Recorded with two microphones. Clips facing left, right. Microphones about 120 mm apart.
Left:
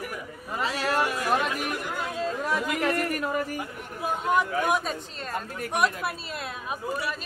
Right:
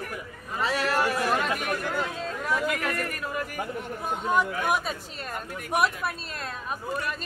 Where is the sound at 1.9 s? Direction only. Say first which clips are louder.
Left 1 dB; 5° left (ahead or behind).